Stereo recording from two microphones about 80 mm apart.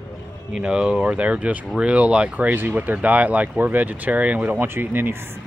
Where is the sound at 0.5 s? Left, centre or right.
Centre.